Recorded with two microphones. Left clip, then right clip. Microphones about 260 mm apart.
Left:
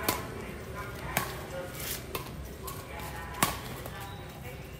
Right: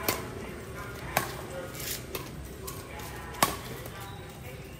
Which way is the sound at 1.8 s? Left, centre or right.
Centre.